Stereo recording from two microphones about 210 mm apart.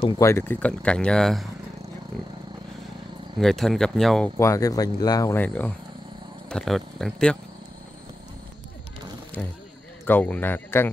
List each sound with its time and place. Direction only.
0.2 s speech: 10° left (ahead or behind)
3.3 s speech: centre (ahead or behind)
4.4 s speech: 15° left (ahead or behind)
10.0 s speech: 10° left (ahead or behind)